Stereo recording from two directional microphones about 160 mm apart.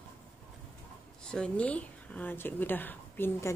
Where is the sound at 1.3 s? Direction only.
5° left (ahead or behind).